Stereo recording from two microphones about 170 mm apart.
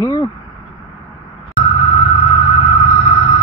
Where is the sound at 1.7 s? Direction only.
35° left (ahead or behind).